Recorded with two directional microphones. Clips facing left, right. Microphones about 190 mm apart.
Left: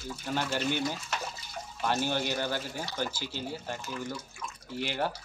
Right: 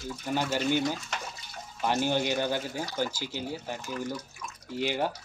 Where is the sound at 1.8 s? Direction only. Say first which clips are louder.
Right 3 dB; 15° right (ahead or behind).